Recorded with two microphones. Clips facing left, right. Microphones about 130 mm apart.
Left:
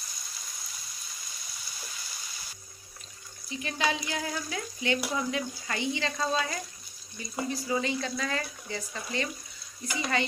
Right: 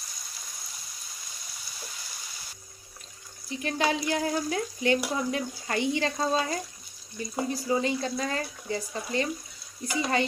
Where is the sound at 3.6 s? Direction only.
50° right (ahead or behind).